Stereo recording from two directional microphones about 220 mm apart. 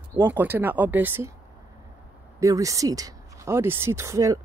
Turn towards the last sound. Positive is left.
turn(degrees=-15)  # may be behind; listen again after turning